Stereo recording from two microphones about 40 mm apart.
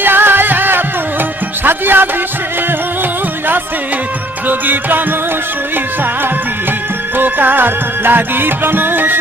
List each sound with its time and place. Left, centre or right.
0.0 s music: right
4.5 s music: right
7.2 s music: right